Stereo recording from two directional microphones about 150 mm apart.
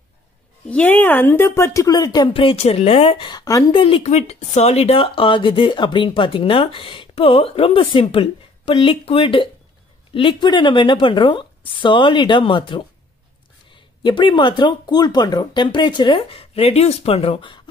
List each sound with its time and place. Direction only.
0.7 s speech: 10° left (ahead or behind)
2.3 s speech: 40° left (ahead or behind); by 3.6 s 25° left (ahead or behind)
3.7 s speech: 40° left (ahead or behind)